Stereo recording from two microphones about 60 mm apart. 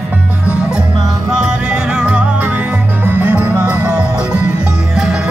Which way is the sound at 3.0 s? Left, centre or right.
Right.